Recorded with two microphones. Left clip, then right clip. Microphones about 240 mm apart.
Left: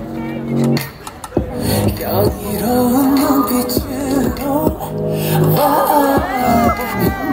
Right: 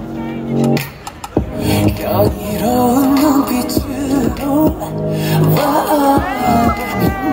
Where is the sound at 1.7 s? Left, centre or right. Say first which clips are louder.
Right 4 dB; centre.